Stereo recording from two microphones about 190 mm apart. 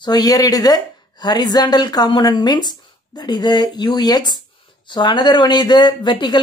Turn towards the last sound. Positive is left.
turn(degrees=25)  # may be behind; listen again after turning